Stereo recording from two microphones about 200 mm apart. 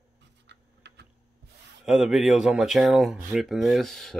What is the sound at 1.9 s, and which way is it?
Speech, centre (ahead or behind).